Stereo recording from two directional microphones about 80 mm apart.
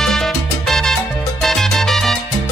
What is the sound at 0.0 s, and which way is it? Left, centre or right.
Salsa music, centre.